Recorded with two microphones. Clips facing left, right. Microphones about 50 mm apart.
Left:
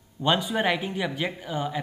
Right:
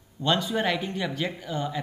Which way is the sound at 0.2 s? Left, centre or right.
Centre.